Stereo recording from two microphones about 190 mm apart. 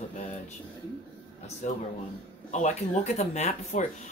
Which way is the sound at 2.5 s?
40° left (ahead or behind).